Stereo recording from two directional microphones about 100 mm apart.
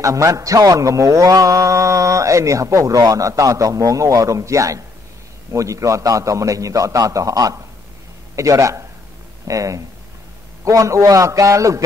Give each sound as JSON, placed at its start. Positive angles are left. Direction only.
{"t": 0.0, "sound": "speech", "side_deg": -35}